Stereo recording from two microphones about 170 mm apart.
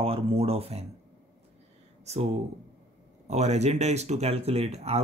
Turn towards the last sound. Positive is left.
turn(degrees=-40)  # may be behind; listen again after turning